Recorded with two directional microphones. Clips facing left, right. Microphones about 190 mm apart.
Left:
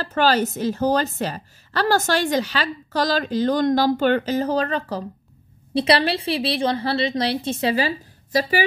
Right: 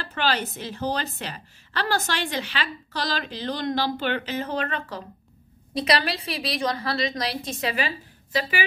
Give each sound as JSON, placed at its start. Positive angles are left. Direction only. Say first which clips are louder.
{"t": 0.0, "sound": "a woman's voice", "louder": "left 7 dB", "side_deg": 40}